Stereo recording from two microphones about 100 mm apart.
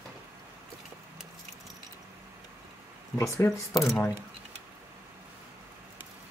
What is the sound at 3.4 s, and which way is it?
Speech, 25° left (ahead or behind).